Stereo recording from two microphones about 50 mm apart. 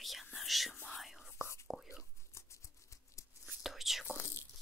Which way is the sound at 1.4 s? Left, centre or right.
Left.